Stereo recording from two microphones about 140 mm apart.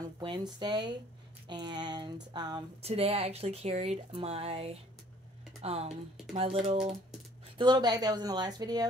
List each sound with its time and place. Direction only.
0.2 s a sound: 35° right (ahead or behind)
2.8 s speech: 45° right (ahead or behind)
7.5 s speech: 30° right (ahead or behind)